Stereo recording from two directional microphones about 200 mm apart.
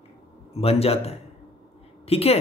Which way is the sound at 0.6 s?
30° left (ahead or behind).